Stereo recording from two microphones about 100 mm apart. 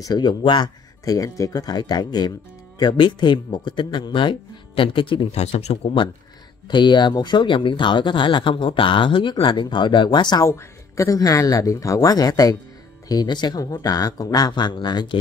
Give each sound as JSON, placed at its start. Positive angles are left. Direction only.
{"t": 0.0, "sound": "speech", "side_deg": 45}
{"t": 1.0, "sound": "speech", "side_deg": 35}
{"t": 5.3, "sound": "speech", "side_deg": 90}
{"t": 6.7, "sound": "speech", "side_deg": 50}
{"t": 10.4, "sound": "speech", "side_deg": 30}